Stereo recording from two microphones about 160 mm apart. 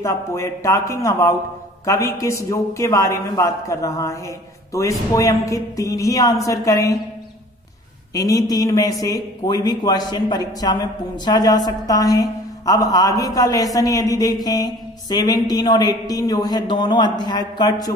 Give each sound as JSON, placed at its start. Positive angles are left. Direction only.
{"t": 0.0, "sound": "a man's voice", "side_deg": 20}
{"t": 8.1, "sound": "a man's voice", "side_deg": 20}